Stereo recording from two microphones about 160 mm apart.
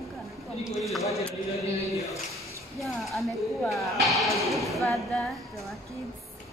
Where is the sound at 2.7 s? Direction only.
Centre (ahead or behind).